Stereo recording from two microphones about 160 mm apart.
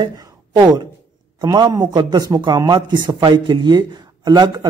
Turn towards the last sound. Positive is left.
turn(degrees=-25)  # may be behind; listen again after turning